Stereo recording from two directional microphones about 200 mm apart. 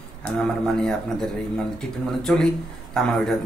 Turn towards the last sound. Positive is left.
turn(degrees=0)  # may be behind; listen again after turning